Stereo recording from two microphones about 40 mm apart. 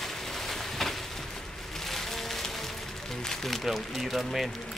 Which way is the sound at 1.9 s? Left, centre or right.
Centre.